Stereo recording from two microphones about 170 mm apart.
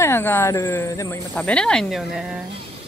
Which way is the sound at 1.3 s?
5° left (ahead or behind).